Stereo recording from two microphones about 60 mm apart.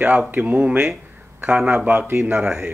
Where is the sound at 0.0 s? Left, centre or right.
Right.